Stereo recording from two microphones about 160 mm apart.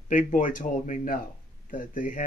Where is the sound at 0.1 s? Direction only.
55° left (ahead or behind).